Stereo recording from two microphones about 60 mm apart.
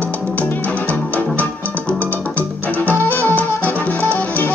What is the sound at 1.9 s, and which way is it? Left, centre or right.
Music, left.